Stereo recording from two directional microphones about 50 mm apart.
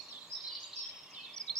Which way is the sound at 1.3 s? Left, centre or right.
Centre.